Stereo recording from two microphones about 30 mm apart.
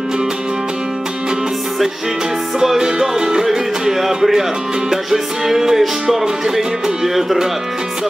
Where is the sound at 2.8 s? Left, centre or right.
Right.